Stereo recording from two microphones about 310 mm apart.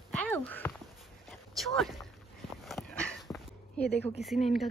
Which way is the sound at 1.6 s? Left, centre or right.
Centre.